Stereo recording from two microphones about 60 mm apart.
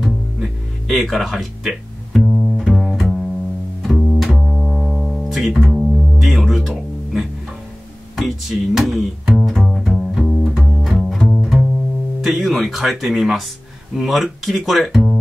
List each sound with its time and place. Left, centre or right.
0.0 s music: centre
8.2 s a sound: centre
9.2 s double bass: centre
10.6 s music: centre
12.2 s speech: centre